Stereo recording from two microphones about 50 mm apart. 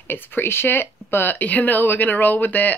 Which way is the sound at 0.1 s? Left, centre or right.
Left.